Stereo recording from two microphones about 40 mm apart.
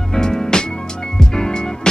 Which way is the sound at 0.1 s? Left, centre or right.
Centre.